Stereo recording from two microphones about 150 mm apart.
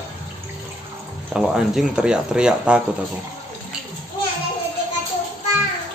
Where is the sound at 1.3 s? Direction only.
5° right (ahead or behind).